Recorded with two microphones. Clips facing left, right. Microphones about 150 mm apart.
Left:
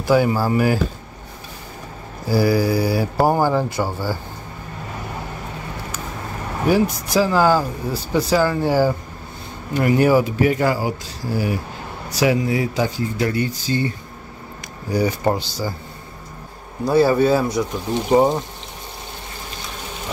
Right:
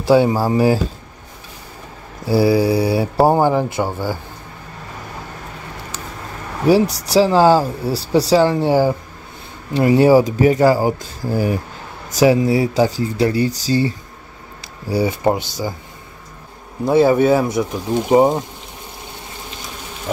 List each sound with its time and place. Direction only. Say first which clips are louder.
0.0 s speech: right 3 dB; 30° right (ahead or behind)
2.2 s speech: right 3 dB; 25° right (ahead or behind)
6.7 s speech: right 4 dB; 35° right (ahead or behind)
16.8 s speech: right 2 dB; 20° right (ahead or behind)